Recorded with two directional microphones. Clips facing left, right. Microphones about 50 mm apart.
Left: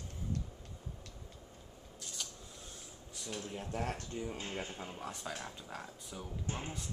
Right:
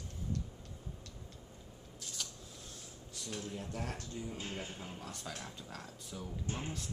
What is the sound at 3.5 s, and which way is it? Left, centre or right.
Speech, left.